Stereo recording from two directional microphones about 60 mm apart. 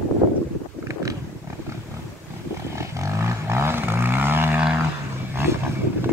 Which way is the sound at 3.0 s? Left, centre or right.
Right.